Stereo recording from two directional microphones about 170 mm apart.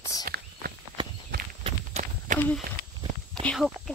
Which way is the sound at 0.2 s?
60° right (ahead or behind).